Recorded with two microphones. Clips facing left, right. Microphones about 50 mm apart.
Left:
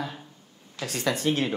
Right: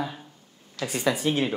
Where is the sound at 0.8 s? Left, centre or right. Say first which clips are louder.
Right 1 dB; centre.